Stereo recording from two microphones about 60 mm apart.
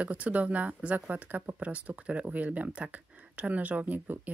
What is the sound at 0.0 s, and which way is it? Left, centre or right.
Speech, right.